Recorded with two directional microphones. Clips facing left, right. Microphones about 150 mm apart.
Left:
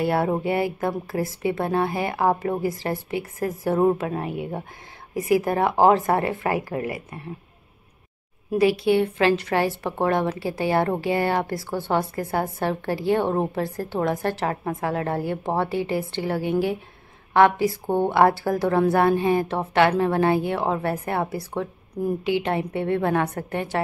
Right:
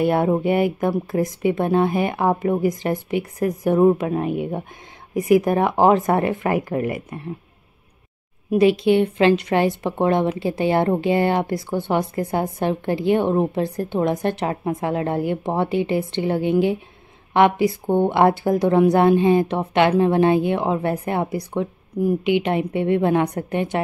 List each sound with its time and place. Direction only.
0.0 s a woman's voice: 20° right (ahead or behind)
8.5 s a woman's voice: 20° right (ahead or behind)